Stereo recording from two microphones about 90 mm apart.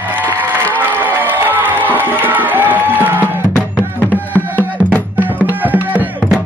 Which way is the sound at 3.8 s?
20° left (ahead or behind).